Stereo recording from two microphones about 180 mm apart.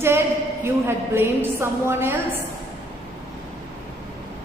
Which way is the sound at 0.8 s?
15° right (ahead or behind).